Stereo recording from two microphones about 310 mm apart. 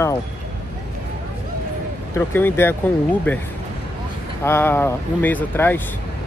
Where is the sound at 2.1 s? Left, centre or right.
Centre.